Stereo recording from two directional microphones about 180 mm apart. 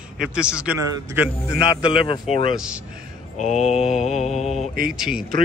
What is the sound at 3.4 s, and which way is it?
Mantra, 40° left (ahead or behind).